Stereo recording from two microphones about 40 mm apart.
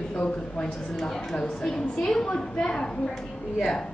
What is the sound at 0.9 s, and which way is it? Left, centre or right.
A woman's voice, centre.